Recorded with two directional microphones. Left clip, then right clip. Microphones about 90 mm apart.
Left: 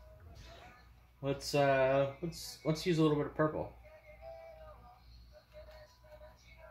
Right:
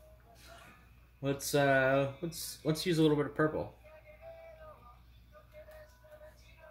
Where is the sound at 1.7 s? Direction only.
70° right (ahead or behind).